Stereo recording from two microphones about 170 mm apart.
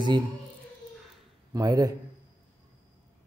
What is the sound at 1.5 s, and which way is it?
Speech, 20° right (ahead or behind).